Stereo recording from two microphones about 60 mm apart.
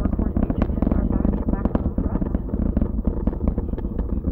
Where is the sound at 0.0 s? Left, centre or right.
Right.